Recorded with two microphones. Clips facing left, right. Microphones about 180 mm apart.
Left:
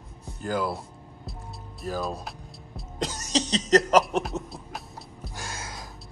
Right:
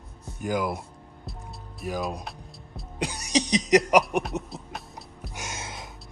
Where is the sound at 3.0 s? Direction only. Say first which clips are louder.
Right 1 dB; 15° right (ahead or behind).